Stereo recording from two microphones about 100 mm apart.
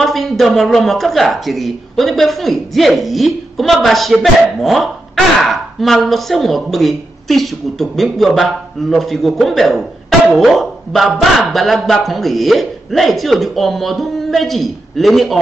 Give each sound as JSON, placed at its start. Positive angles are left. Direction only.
{"t": 0.0, "sound": "a woman's voice", "side_deg": 0}